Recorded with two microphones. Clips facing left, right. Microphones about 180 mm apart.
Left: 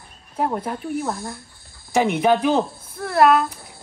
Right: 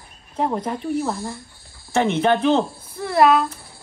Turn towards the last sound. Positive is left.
turn(degrees=0)  # may be behind; listen again after turning